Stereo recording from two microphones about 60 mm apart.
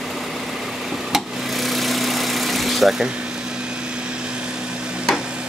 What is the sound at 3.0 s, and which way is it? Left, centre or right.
Speech, centre.